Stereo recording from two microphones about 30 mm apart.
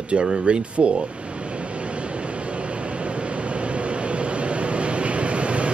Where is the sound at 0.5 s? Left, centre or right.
Right.